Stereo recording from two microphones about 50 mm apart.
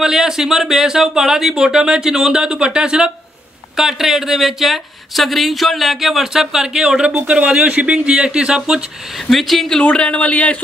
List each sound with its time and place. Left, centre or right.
0.0 s speech: centre
3.7 s speech: centre
7.2 s speech: right
9.3 s speech: centre
9.8 s a man's voice: left